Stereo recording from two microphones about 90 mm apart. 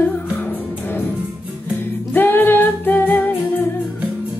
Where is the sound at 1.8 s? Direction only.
20° left (ahead or behind).